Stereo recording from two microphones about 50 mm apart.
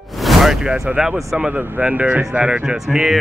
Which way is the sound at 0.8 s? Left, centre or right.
Centre.